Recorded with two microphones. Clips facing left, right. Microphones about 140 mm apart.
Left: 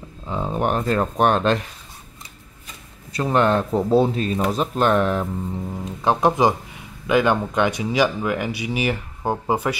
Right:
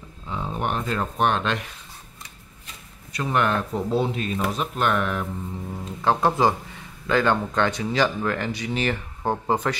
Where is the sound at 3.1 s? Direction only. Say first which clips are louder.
Left 5 dB; 30° left (ahead or behind).